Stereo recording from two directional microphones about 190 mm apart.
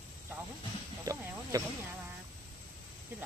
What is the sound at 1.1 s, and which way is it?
Snake, 20° right (ahead or behind).